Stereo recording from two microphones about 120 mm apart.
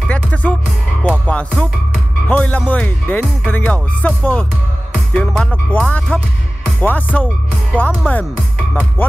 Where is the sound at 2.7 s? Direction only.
10° left (ahead or behind).